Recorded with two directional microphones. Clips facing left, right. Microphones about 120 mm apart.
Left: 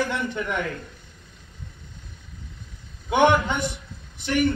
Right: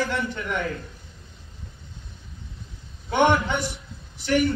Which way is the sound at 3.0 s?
15° left (ahead or behind).